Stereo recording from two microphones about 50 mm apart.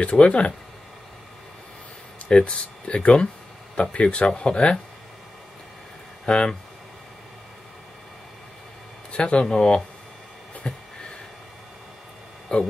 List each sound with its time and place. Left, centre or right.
0.0 s speech: left
2.2 s speech: left
6.2 s speech: centre
9.1 s speech: left
10.6 s speech: left
12.5 s speech: centre